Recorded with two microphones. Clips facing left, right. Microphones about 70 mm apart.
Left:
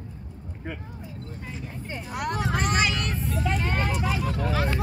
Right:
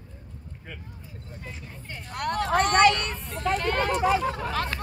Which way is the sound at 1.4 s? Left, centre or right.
Centre.